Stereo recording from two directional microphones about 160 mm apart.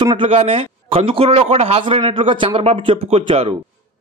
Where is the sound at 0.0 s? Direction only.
35° right (ahead or behind).